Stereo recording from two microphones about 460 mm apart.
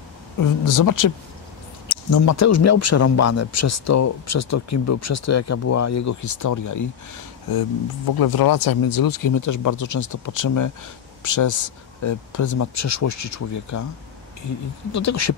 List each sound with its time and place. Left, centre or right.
0.4 s speech: left
2.1 s speech: left
8.1 s speech: left
14.9 s speech: left